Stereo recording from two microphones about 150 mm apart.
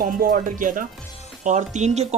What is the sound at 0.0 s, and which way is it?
Speech, 65° right (ahead or behind).